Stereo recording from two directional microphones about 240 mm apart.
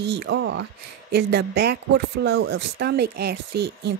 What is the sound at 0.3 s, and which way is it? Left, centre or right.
Speech, right.